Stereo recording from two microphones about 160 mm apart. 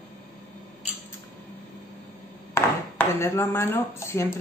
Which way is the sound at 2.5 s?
15° left (ahead or behind).